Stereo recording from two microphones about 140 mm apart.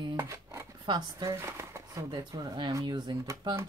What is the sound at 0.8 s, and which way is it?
Speech, 30° right (ahead or behind).